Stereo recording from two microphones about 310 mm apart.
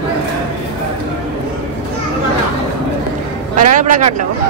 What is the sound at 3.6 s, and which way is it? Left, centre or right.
Speech, right.